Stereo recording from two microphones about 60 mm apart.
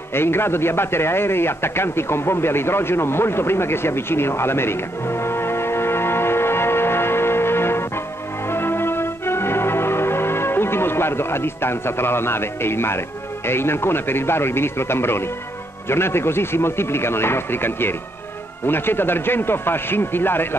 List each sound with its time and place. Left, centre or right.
0.1 s a man's voice: left
8.5 s music: left
13.5 s speech: left